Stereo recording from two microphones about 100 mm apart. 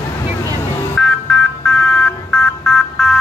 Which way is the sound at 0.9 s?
10° left (ahead or behind).